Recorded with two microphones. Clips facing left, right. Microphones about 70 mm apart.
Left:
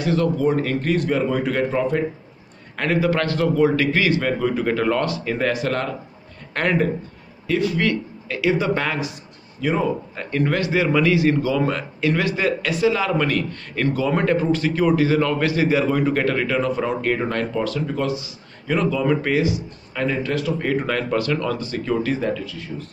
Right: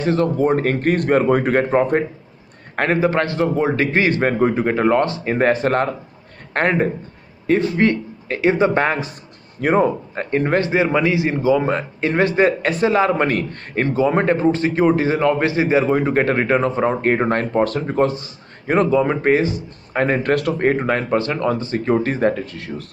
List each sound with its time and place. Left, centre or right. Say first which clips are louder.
0.0 s a man's voice: right 2 dB; right
4.6 s a man's voice: right 4 dB; right
9.6 s speech: right 6 dB; right
10.1 s a man's voice: right 4 dB; right
13.8 s a man's voice: right 3 dB; right
20.6 s a man's voice: right 4 dB; right